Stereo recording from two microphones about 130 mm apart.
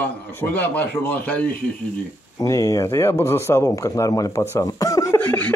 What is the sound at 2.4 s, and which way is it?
Speech, 25° left (ahead or behind).